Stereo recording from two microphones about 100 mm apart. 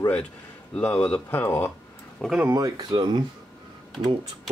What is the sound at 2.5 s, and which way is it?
Speech, 40° right (ahead or behind).